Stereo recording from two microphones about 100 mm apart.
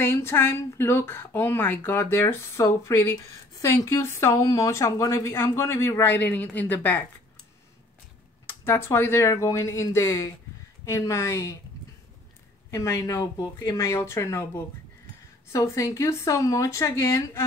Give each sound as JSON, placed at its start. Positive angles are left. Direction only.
{"t": 0.0, "sound": "speech", "side_deg": 25}
{"t": 8.5, "sound": "speech", "side_deg": 25}
{"t": 12.7, "sound": "speech", "side_deg": 30}